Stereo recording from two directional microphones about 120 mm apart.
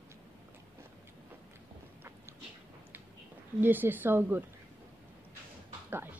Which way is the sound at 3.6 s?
15° right (ahead or behind).